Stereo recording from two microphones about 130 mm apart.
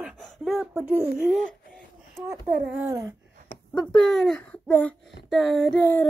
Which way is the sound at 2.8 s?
25° right (ahead or behind).